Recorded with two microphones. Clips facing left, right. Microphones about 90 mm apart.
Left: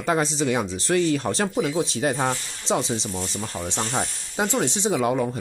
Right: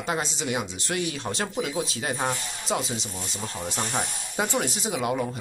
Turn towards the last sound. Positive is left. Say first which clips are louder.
# left 5 dB
turn(degrees=30)  # may be behind; listen again after turning